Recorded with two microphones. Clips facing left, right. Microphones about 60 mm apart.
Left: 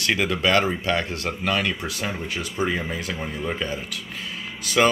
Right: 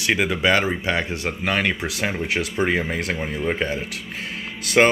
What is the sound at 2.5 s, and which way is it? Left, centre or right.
Speech, right.